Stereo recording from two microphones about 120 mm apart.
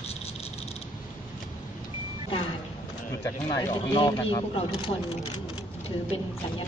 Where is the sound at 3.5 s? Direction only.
25° left (ahead or behind).